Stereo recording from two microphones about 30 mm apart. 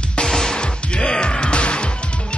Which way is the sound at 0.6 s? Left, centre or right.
Left.